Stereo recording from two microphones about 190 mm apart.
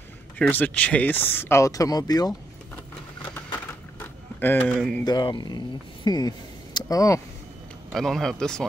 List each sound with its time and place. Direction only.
0.4 s speech: 10° left (ahead or behind)
3.6 s a sound: 10° left (ahead or behind)
5.0 s speech: 20° left (ahead or behind)
7.9 s speech: centre (ahead or behind)